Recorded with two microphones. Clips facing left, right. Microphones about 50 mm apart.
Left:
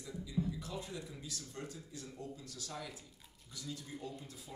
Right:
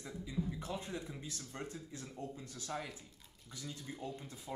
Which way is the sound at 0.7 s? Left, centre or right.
Right.